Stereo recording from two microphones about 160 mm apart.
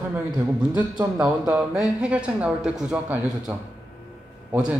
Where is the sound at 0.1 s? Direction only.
10° right (ahead or behind).